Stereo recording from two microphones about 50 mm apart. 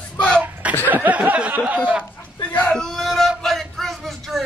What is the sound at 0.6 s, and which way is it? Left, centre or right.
Chuckle, right.